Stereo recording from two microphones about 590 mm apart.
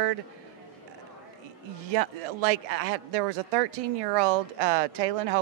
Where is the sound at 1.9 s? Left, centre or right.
Right.